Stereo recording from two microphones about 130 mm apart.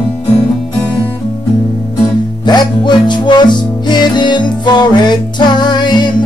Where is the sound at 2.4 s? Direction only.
35° left (ahead or behind).